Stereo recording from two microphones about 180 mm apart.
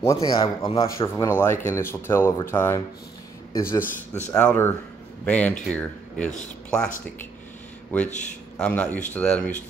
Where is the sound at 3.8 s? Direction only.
40° left (ahead or behind).